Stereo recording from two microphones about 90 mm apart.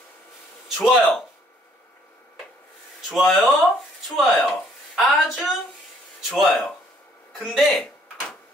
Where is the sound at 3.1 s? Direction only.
Centre (ahead or behind).